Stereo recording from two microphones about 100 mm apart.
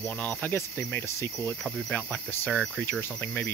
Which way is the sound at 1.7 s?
5° left (ahead or behind).